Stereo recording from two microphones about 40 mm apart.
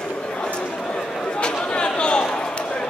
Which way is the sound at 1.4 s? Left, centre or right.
Left.